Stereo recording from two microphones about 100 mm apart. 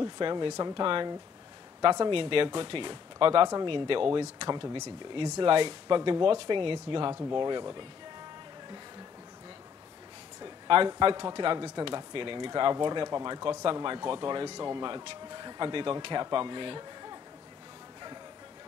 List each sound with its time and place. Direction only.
0.0 s speech: 50° right (ahead or behind)
10.4 s a sound: 55° right (ahead or behind)
11.0 s speech: 55° right (ahead or behind)